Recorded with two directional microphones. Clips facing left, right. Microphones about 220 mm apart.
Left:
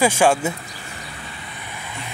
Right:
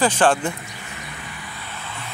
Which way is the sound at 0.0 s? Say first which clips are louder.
Left 1 dB; 10° left (ahead or behind).